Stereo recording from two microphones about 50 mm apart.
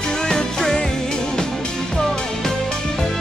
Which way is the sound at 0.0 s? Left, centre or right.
Centre.